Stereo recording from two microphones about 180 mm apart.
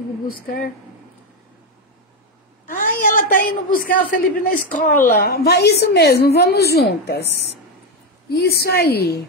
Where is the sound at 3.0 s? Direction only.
50° left (ahead or behind).